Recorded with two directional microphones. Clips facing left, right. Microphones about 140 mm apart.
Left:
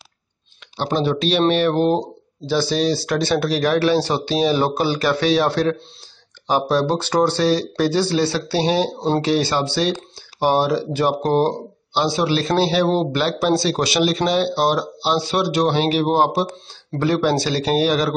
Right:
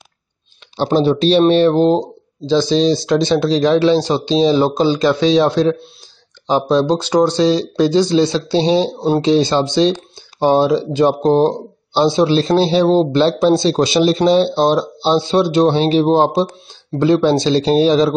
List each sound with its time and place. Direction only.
0.7 s speech: 30° right (ahead or behind)